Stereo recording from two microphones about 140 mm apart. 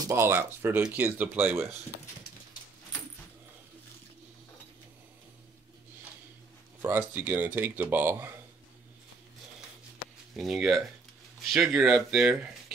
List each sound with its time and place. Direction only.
0.0 s speech: 20° right (ahead or behind)
6.8 s speech: 15° right (ahead or behind)
10.3 s speech: centre (ahead or behind)